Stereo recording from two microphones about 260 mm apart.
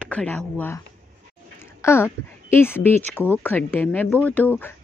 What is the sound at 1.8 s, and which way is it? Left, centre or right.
Speech, centre.